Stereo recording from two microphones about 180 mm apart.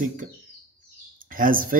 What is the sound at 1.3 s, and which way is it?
Speech, 50° right (ahead or behind).